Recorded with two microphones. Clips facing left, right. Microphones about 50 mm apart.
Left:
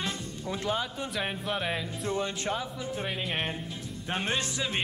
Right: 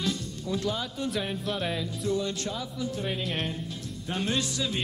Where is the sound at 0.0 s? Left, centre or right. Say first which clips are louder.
Right 3 dB; left.